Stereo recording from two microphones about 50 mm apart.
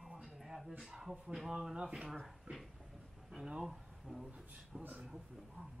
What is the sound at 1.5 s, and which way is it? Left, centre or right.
Speech, centre.